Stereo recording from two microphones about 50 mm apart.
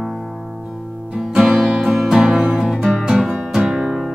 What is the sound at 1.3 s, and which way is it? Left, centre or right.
Music, centre.